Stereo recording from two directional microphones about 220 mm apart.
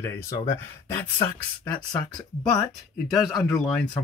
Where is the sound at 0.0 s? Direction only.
10° left (ahead or behind).